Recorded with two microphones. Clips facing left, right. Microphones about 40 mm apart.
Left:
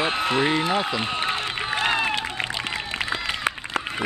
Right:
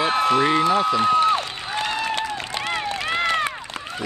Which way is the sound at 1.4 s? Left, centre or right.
Left.